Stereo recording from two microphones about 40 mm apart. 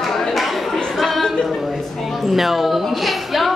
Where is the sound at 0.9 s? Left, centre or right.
Centre.